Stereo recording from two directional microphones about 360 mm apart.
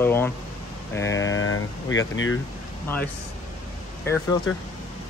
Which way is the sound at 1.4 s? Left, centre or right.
Left.